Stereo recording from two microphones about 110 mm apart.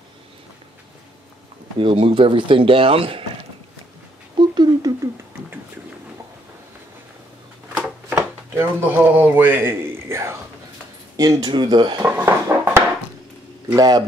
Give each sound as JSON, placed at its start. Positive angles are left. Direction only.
{"t": 1.8, "sound": "speech", "side_deg": -50}
{"t": 4.4, "sound": "a sound", "side_deg": -45}
{"t": 8.2, "sound": "a sound", "side_deg": -20}
{"t": 11.1, "sound": "speech", "side_deg": -40}
{"t": 12.2, "sound": "music", "side_deg": -20}
{"t": 13.7, "sound": "speech", "side_deg": -35}